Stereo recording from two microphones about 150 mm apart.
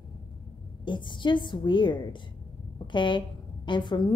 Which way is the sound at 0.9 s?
30° left (ahead or behind).